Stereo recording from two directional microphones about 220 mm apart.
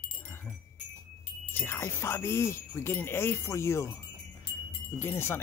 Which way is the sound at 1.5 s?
10° left (ahead or behind).